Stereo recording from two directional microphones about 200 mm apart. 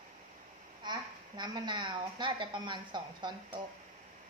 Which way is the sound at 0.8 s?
20° right (ahead or behind).